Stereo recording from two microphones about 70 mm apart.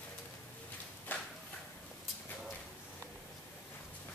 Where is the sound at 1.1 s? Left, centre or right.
Left.